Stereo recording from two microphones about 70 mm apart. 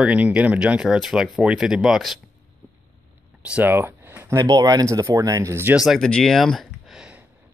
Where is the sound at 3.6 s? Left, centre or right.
Right.